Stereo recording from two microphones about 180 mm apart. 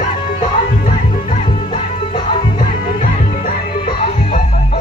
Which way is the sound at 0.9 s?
45° left (ahead or behind).